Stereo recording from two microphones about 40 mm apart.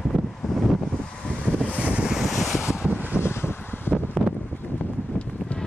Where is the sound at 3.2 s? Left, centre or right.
Left.